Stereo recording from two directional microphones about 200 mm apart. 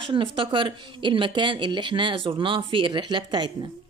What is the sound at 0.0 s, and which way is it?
A woman's voice, 25° right (ahead or behind).